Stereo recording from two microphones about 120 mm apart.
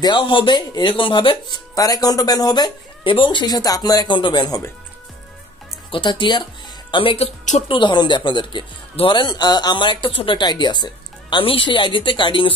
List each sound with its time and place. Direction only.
0.0 s speech: 40° left (ahead or behind)
1.8 s speech: 30° left (ahead or behind)
5.9 s speech: 45° left (ahead or behind)